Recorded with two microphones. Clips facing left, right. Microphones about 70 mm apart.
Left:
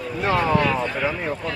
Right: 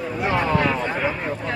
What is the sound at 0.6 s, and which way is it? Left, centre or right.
Speech, centre.